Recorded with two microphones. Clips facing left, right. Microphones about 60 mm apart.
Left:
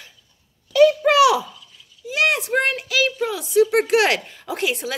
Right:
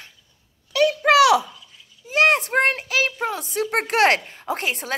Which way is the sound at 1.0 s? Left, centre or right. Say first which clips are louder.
Even; right.